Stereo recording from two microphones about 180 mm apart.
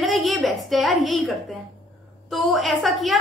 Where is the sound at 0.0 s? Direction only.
Centre (ahead or behind).